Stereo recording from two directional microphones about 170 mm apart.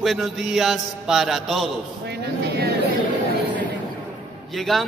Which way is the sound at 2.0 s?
75° right (ahead or behind).